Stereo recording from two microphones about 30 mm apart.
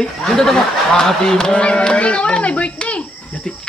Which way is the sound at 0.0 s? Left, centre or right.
Centre.